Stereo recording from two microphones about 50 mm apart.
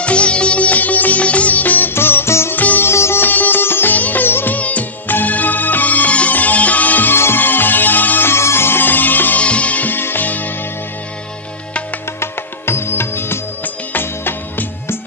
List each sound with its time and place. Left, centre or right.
0.0 s music: left
2.0 s music: left
2.5 s music: left
2.8 s music: left
3.2 s music: left
4.6 s music of bollywood: left
5.1 s music: left
7.2 s music: left
8.3 s music: left
9.4 s music: left
12.2 s music: left